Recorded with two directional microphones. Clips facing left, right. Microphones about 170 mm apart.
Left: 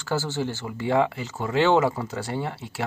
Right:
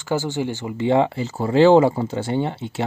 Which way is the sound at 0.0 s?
15° right (ahead or behind).